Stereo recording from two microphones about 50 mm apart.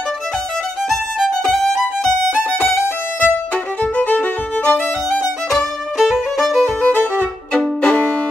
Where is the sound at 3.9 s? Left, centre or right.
Left.